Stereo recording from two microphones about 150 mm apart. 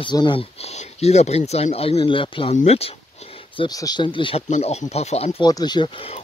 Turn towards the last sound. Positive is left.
turn(degrees=35)  # may be behind; listen again after turning